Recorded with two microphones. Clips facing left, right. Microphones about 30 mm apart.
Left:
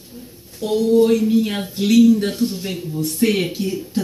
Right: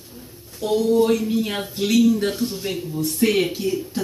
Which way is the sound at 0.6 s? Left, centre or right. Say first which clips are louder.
Left 1 dB; left.